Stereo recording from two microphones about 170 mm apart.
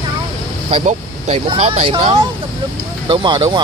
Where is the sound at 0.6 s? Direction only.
35° right (ahead or behind).